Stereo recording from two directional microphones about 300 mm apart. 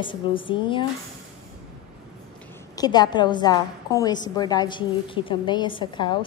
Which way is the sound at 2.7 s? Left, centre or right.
Centre.